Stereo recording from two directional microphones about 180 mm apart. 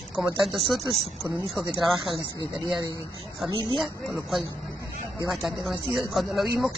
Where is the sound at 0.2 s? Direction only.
5° right (ahead or behind).